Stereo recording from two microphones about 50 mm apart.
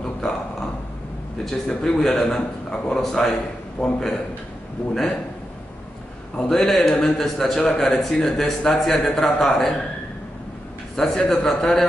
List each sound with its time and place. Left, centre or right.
0.0 s a sound: centre
1.4 s speech: centre
3.8 s a man's voice: left
6.3 s speech: centre
11.0 s speech: centre